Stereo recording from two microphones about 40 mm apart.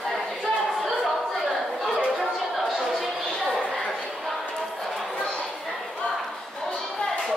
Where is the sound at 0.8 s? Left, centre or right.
Centre.